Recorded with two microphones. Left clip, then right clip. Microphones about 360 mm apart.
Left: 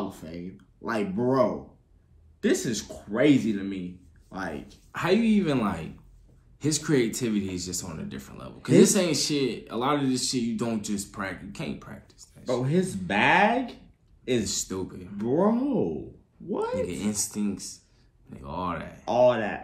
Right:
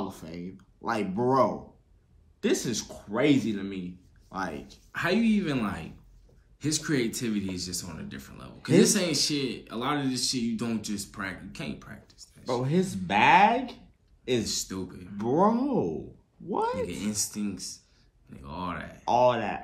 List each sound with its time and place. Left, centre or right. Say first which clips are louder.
0.1 s speech: left 1 dB; centre
4.9 s speech: left 2 dB; centre
12.6 s speech: left 1 dB; centre
14.4 s speech: left 2 dB; centre
15.1 s speech: even; centre
16.7 s speech: left 3 dB; centre
19.0 s speech: left 2 dB; centre